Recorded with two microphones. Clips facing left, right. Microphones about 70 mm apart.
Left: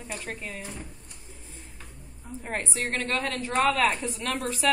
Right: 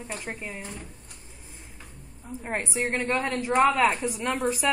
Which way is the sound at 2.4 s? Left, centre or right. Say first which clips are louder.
Right 3 dB; centre.